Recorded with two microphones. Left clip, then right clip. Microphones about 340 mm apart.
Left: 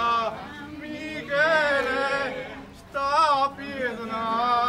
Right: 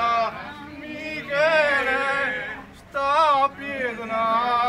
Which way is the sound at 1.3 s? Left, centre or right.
Centre.